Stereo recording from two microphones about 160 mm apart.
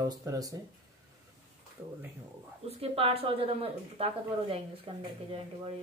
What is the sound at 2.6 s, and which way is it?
Speech, 40° right (ahead or behind).